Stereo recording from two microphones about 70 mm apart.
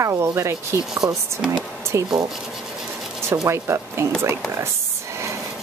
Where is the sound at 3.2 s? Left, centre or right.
Right.